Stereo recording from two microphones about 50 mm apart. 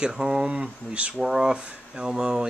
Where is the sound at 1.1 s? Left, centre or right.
Centre.